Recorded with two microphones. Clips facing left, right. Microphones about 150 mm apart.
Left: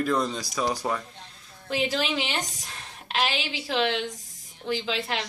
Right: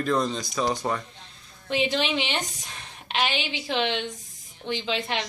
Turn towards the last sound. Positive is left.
turn(degrees=0)  # may be behind; listen again after turning